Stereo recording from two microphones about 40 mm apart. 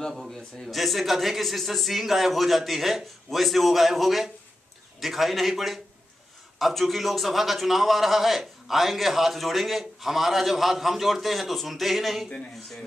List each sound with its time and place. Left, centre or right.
0.3 s a man's voice: centre